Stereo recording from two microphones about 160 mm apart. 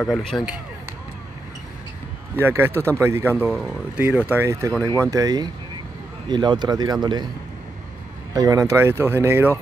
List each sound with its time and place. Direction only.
0.0 s speech: centre (ahead or behind)
2.3 s speech: 15° right (ahead or behind)
3.4 s speech: centre (ahead or behind)
4.3 s speech: 15° right (ahead or behind)
4.8 s speech: 10° left (ahead or behind)
5.1 s speech: 25° right (ahead or behind)
8.3 s speech: 20° right (ahead or behind)